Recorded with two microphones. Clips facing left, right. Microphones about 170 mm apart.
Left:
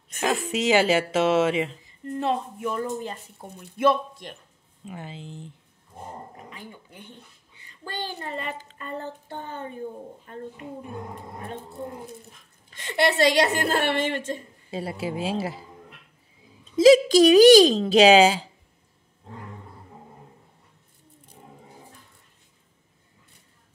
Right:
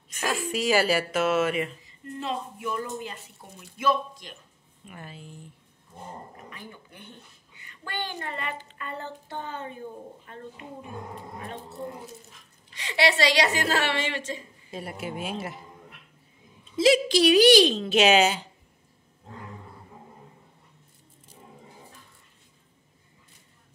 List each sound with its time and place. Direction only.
0.2 s a woman's voice: 20° left (ahead or behind)
2.1 s a woman's voice: 55° left (ahead or behind)
2.7 s a woman's voice: 45° left (ahead or behind)
3.7 s a man's voice: 60° left (ahead or behind)
4.8 s a woman's voice: 20° left (ahead or behind)
7.5 s speech: 35° left (ahead or behind)
12.7 s a woman's voice: 50° left (ahead or behind)
14.7 s speech: 30° left (ahead or behind)
16.7 s speech: 45° left (ahead or behind)